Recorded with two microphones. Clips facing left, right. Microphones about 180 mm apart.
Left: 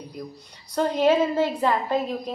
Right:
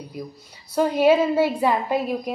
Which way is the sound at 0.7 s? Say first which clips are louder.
Right 3 dB; 10° right (ahead or behind).